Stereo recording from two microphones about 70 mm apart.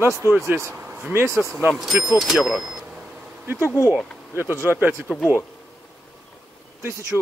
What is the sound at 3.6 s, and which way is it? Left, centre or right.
Speech, left.